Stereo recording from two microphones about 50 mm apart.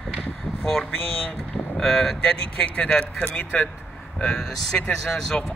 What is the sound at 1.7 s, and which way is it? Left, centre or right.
A man's voice, centre.